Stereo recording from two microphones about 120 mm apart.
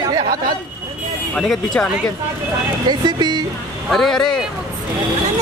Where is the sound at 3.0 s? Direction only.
35° right (ahead or behind).